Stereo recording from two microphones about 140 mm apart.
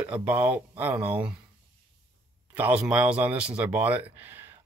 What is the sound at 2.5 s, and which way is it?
Speech, 10° right (ahead or behind).